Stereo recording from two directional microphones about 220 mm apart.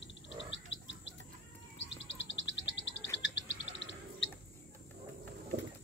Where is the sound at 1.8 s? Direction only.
55° left (ahead or behind).